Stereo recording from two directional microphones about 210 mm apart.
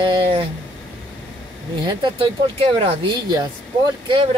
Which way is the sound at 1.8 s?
25° right (ahead or behind).